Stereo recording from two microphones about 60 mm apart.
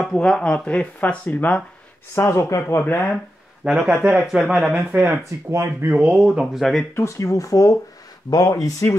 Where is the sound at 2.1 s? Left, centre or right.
Left.